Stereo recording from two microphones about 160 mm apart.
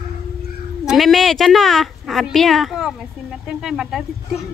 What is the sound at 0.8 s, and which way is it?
Speech, centre (ahead or behind).